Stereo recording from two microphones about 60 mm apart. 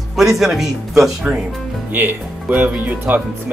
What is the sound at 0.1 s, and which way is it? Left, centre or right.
Speech, centre.